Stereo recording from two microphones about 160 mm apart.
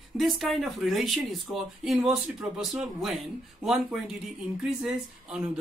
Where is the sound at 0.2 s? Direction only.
Centre (ahead or behind).